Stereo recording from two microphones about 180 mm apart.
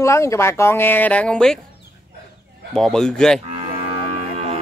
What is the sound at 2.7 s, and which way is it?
Speech, 5° left (ahead or behind).